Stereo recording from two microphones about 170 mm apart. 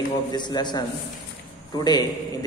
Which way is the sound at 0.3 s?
25° left (ahead or behind).